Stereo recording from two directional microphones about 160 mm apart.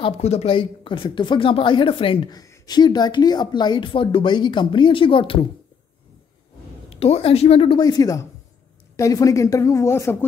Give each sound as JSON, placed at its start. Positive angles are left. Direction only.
{"t": 0.0, "sound": "speech", "side_deg": 40}
{"t": 6.9, "sound": "a woman's voice", "side_deg": 40}